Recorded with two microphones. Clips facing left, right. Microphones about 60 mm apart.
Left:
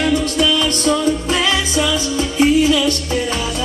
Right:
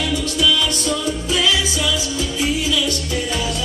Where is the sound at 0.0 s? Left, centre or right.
Left.